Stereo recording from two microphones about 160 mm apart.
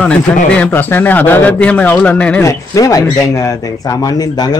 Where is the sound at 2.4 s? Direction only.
20° left (ahead or behind).